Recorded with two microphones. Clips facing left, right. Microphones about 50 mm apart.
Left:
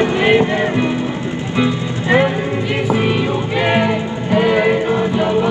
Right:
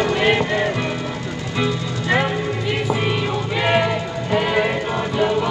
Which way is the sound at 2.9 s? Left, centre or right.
Centre.